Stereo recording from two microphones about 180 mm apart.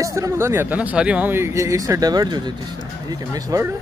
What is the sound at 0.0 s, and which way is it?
Speech, 15° right (ahead or behind).